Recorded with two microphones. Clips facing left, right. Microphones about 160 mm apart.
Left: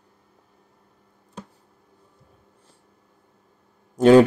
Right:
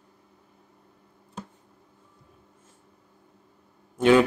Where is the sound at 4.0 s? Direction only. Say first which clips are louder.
Left 6 dB; 40° left (ahead or behind).